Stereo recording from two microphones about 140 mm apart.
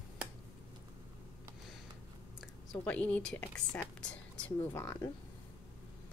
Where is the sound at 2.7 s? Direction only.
10° left (ahead or behind).